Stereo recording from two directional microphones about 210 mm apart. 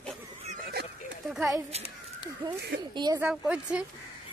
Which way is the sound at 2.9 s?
20° right (ahead or behind).